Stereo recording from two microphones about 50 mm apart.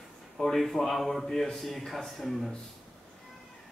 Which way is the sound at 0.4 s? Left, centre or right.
Centre.